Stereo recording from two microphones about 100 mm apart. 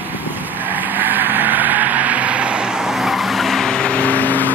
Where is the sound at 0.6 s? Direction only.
20° right (ahead or behind).